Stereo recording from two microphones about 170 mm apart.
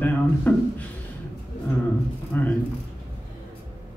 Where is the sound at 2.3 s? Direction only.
10° left (ahead or behind).